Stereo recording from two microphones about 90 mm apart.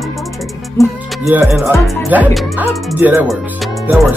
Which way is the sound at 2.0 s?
20° right (ahead or behind).